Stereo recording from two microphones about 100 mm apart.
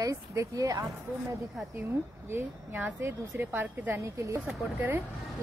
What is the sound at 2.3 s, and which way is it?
Speech, 20° right (ahead or behind).